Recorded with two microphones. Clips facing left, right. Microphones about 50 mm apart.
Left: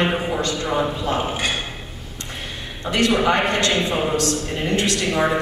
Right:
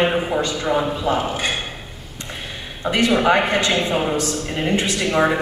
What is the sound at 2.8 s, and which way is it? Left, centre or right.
A man's voice, centre.